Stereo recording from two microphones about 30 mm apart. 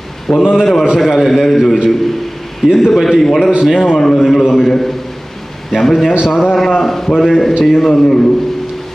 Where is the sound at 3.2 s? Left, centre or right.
Centre.